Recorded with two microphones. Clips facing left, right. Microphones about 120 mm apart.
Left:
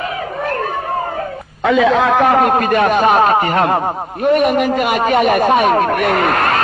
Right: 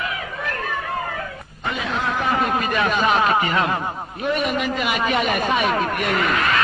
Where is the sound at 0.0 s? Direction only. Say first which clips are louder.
Left 7 dB; 45° left (ahead or behind).